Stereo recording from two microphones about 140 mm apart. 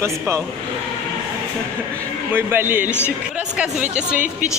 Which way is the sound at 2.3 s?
15° right (ahead or behind).